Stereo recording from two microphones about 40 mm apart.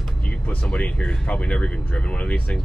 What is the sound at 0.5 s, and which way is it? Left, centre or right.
Speech, left.